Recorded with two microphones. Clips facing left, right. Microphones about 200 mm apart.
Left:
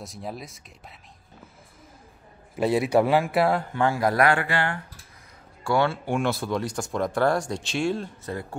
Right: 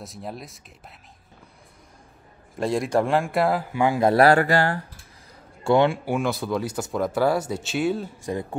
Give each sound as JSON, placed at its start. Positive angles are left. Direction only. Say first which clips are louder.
{"t": 0.0, "sound": "speech", "louder": "even", "side_deg": 0}
{"t": 2.5, "sound": "speech", "louder": "left 2 dB", "side_deg": 5}
{"t": 3.8, "sound": "speech", "louder": "right 5 dB", "side_deg": -20}
{"t": 5.6, "sound": "speech", "louder": "right 5 dB", "side_deg": -20}
{"t": 6.0, "sound": "speech", "louder": "right 1 dB", "side_deg": 0}
{"t": 8.3, "sound": "speech", "louder": "right 6 dB", "side_deg": -20}